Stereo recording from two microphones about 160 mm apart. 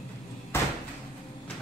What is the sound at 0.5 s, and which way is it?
Cupboard open or close, 15° left (ahead or behind).